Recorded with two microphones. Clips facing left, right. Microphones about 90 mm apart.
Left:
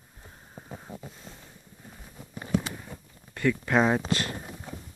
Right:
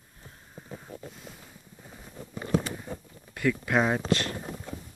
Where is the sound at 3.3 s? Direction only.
5° right (ahead or behind).